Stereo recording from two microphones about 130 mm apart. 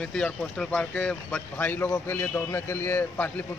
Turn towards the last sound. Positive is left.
turn(degrees=15)  # may be behind; listen again after turning